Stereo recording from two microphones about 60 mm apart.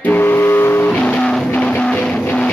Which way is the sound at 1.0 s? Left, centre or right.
Centre.